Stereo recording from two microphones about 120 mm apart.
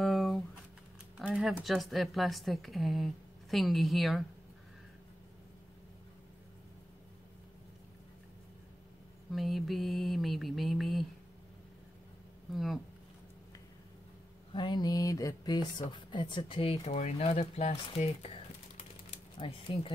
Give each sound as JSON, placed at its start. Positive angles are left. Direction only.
{"t": 0.0, "sound": "typing", "side_deg": 0}
{"t": 1.3, "sound": "speech", "side_deg": 0}
{"t": 9.3, "sound": "speech", "side_deg": 0}
{"t": 12.5, "sound": "speech", "side_deg": 0}
{"t": 14.5, "sound": "speech", "side_deg": 40}
{"t": 19.3, "sound": "speech", "side_deg": 50}